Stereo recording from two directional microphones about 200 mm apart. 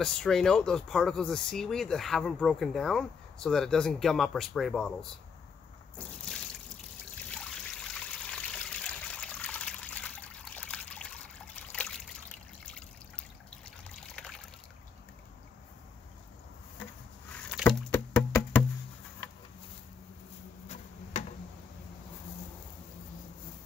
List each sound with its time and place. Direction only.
0.0 s speech: centre (ahead or behind)
5.9 s water: 5° left (ahead or behind)
7.9 s trickle: 5° left (ahead or behind)
17.6 s rowboat: 5° right (ahead or behind)
17.9 s music: 10° left (ahead or behind)
20.6 s tick-tock: 35° left (ahead or behind)